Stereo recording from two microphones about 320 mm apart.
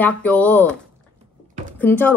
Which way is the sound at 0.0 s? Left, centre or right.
Centre.